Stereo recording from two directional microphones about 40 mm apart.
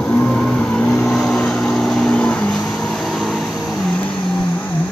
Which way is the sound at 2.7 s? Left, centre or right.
Centre.